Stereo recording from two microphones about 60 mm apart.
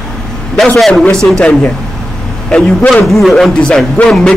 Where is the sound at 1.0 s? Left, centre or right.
Centre.